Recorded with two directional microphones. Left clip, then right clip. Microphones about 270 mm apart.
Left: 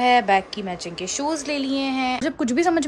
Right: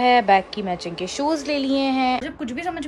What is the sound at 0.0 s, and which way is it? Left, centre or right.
A woman's voice, centre.